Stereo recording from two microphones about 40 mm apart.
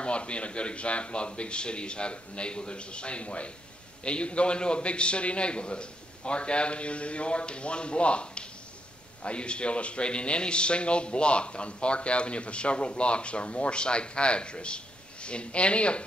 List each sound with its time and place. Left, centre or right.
0.0 s speech: left